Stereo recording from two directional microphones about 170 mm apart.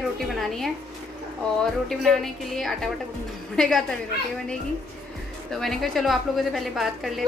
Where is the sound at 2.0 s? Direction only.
Centre (ahead or behind).